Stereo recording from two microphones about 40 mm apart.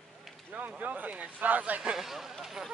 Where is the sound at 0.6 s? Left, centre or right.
Right.